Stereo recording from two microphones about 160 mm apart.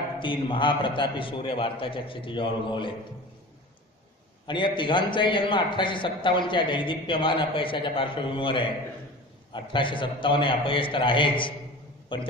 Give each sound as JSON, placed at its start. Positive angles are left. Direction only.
{"t": 0.2, "sound": "a man's voice", "side_deg": 30}
{"t": 4.5, "sound": "a man's voice", "side_deg": 30}